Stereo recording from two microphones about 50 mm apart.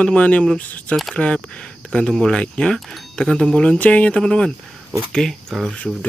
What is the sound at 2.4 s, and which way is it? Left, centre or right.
Speech, centre.